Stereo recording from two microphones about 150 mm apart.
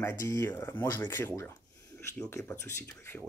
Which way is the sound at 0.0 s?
15° left (ahead or behind).